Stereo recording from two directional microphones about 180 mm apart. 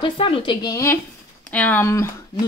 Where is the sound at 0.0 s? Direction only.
30° left (ahead or behind).